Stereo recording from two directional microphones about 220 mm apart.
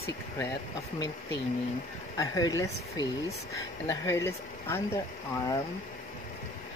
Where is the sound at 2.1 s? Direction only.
15° left (ahead or behind).